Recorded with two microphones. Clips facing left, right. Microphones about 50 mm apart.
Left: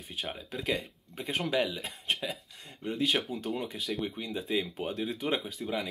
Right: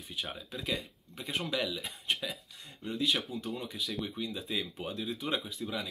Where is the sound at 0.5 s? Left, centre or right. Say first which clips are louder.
Left 6 dB; left.